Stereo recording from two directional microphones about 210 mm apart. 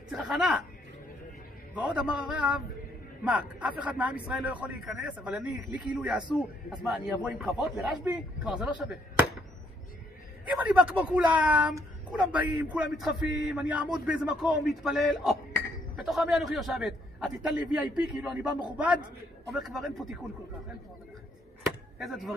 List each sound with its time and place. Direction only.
0.1 s a man's voice: 5° right (ahead or behind)
1.8 s a man's voice: 5° right (ahead or behind)
10.5 s a man's voice: 5° right (ahead or behind)
18.5 s a man's voice: 20° left (ahead or behind)
19.5 s a man's voice: centre (ahead or behind)
21.9 s speech: centre (ahead or behind)